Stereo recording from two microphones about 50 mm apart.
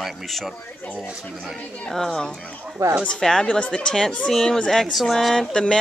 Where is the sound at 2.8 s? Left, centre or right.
Right.